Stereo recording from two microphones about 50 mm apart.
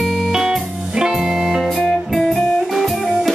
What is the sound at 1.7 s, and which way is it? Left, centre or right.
Music, centre.